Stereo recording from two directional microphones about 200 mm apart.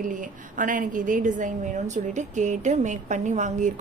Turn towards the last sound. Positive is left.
turn(degrees=-40)  # may be behind; listen again after turning